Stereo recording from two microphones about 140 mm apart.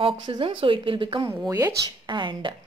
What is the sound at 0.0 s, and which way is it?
A woman's voice, 40° right (ahead or behind).